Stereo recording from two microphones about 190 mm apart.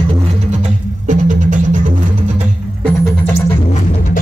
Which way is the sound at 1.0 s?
40° right (ahead or behind).